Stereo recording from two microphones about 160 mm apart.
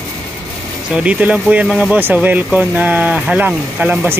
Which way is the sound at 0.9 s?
5° right (ahead or behind).